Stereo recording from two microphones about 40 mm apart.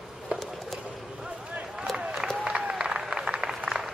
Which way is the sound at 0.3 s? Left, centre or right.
Right.